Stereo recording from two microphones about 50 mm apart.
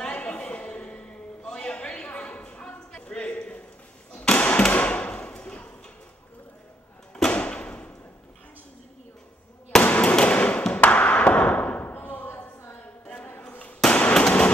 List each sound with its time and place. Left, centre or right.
0.0 s a sound: left
7.2 s door: left
9.8 s fireworks: left
10.1 s a sound: left
11.8 s slam: left
13.9 s firecracker: left